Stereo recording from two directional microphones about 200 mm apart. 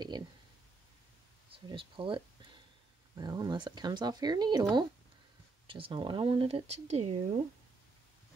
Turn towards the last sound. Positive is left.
turn(degrees=-35)  # may be behind; listen again after turning